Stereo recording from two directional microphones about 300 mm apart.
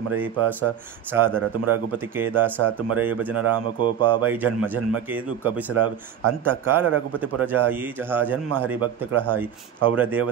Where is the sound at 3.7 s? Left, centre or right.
Centre.